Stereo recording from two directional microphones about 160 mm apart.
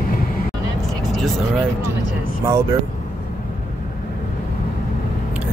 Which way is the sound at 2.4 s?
15° right (ahead or behind).